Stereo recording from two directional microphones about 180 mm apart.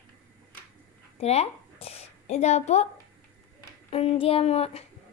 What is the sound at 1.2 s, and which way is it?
Speech, 35° left (ahead or behind).